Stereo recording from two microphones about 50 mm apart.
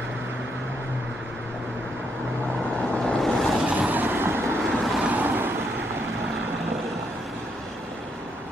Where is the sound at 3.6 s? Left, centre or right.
Right.